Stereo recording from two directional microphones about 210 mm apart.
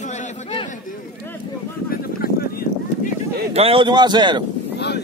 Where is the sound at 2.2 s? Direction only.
45° left (ahead or behind).